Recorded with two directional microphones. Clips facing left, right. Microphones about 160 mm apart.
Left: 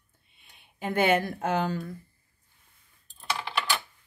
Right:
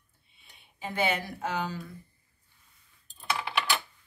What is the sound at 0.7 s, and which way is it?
Speech, 55° left (ahead or behind).